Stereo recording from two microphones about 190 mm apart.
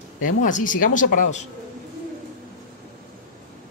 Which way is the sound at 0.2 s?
40° left (ahead or behind).